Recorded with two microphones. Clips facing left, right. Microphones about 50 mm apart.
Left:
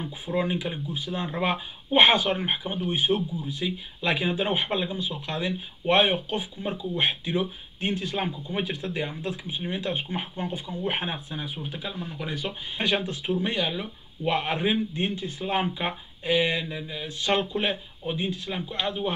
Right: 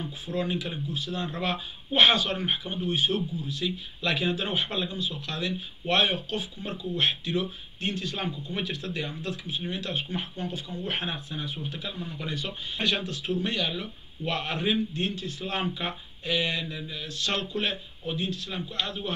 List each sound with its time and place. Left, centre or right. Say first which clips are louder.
0.3 s speech: left 3 dB; left